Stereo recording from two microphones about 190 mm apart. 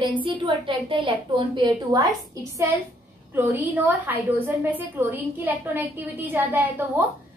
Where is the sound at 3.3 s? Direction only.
10° right (ahead or behind).